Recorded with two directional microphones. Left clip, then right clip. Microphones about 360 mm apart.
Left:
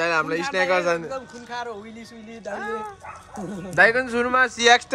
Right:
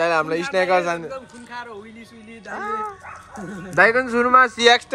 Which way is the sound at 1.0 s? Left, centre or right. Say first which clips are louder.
Left 1 dB; left.